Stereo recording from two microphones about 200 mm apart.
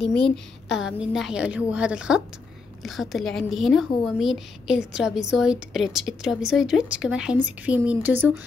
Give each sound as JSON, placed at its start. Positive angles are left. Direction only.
{"t": 0.0, "sound": "a woman's voice", "side_deg": 0}